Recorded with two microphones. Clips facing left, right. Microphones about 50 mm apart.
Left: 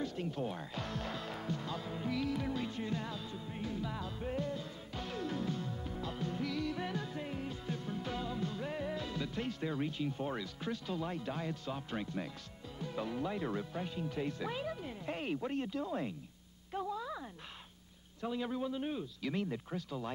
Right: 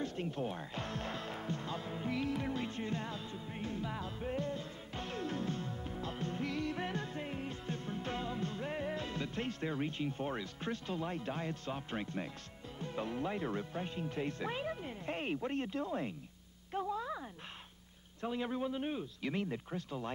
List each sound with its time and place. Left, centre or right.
0.0 s music: right
4.2 s music: centre
4.5 s music: right
7.2 s music: right
8.6 s music: right
8.9 s music: right
10.4 s a man's voice: right; by 13.8 s centre
13.8 s a man's voice: right
16.7 s a sound: centre
18.2 s a man's voice: right